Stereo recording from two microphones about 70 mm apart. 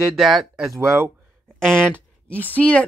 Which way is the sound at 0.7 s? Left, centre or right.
Right.